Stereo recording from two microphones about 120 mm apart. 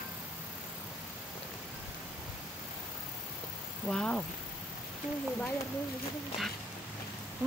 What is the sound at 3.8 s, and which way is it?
Vehicle, 5° left (ahead or behind).